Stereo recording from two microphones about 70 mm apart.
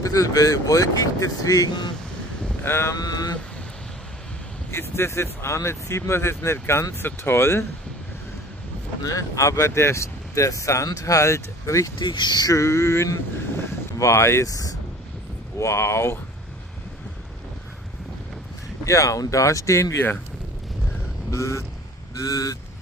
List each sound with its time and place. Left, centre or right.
0.0 s speech: left
2.6 s speech: left
2.9 s speech: left
4.6 s speech: left
9.0 s speech: left
12.2 s speech: left
12.5 s speech: left
15.6 s speech: left
18.9 s speech: left
21.3 s speech: left
22.2 s speech: left